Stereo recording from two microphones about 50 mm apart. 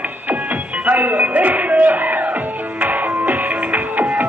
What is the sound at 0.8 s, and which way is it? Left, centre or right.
Music, right.